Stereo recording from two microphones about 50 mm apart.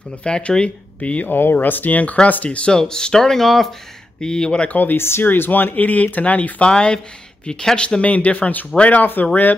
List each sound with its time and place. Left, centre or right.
0.2 s speech: left
1.3 s speech: left; by 4.6 s centre
4.6 s speech: left
4.9 s speech: left
5.2 s speech: left
6.7 s speech: centre; by 9.6 s left